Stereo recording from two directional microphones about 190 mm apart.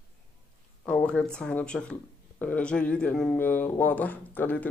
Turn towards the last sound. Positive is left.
turn(degrees=10)  # may be behind; listen again after turning